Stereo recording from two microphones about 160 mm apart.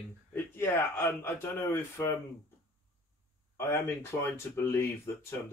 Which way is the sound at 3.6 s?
15° left (ahead or behind).